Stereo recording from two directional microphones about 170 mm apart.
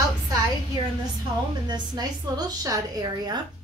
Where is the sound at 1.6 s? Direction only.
25° right (ahead or behind).